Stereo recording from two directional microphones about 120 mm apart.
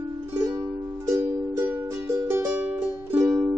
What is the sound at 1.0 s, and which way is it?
Music, 25° right (ahead or behind).